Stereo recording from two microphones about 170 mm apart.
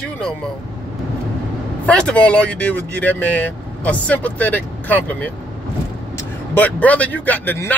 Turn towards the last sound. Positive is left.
turn(degrees=10)  # may be behind; listen again after turning